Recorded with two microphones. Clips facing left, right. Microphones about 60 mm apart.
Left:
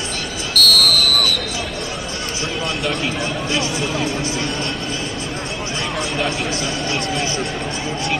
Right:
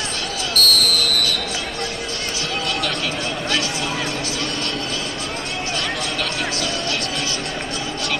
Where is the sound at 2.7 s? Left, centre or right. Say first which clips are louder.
Left 3 dB; left.